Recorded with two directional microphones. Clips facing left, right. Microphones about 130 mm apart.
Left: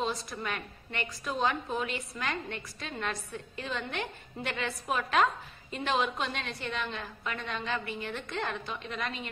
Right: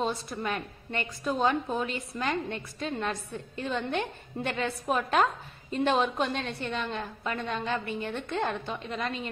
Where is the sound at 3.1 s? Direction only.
30° right (ahead or behind).